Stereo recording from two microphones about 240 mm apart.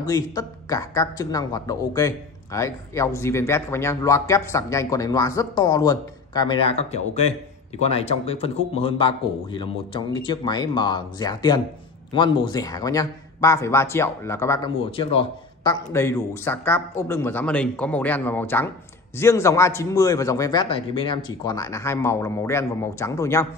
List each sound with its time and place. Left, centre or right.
0.0 s speech: centre
14.9 s speech: left